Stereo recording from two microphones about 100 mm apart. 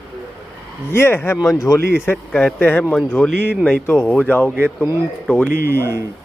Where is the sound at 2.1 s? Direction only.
15° left (ahead or behind).